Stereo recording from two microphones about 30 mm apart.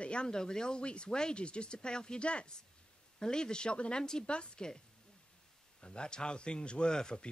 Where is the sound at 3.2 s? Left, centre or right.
Left.